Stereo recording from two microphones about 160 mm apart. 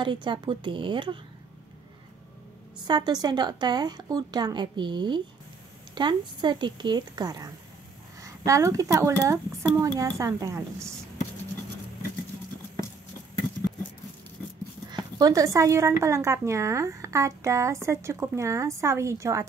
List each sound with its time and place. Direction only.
0.0 s a woman's voice: 30° right (ahead or behind)
2.9 s a woman's voice: 25° right (ahead or behind)
15.1 s a woman's voice: 20° right (ahead or behind)